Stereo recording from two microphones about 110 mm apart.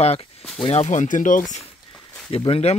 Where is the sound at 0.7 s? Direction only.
85° left.